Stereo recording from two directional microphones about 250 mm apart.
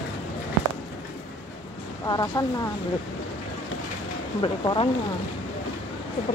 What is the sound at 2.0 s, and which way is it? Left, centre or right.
Speech, centre.